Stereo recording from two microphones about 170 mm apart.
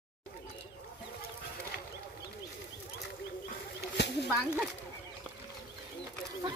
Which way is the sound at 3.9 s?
85° left.